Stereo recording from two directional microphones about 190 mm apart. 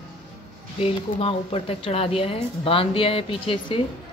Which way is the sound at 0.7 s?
30° left (ahead or behind).